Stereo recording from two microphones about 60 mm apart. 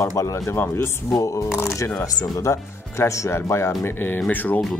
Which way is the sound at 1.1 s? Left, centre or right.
Left.